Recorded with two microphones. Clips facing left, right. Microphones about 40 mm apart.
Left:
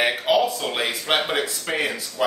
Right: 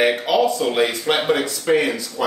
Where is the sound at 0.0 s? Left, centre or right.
Centre.